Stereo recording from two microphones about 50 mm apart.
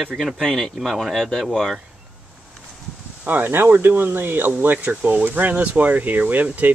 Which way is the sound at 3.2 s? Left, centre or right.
Right.